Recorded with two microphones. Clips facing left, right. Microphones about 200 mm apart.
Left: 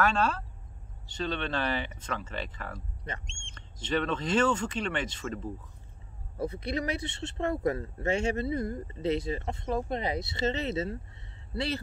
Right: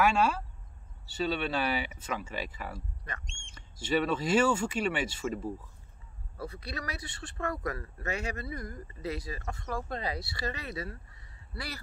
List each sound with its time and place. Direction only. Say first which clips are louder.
0.0 s speech: right 1 dB; 10° right (ahead or behind)
6.3 s speech: left 8 dB; 20° left (ahead or behind)